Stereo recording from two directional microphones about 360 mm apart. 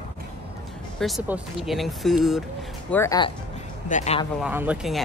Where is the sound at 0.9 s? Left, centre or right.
Centre.